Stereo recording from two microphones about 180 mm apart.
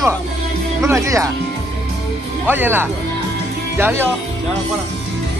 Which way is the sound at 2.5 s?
10° right (ahead or behind).